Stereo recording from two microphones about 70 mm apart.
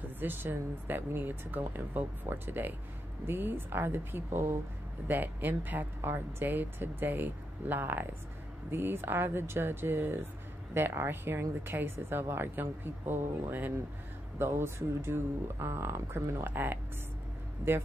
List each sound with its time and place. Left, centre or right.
0.2 s a woman's voice: right
14.4 s a woman's voice: right